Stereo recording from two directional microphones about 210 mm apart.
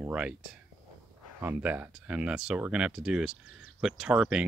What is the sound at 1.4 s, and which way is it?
Speech, 10° right (ahead or behind).